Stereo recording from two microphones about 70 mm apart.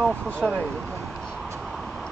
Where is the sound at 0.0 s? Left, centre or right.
Centre.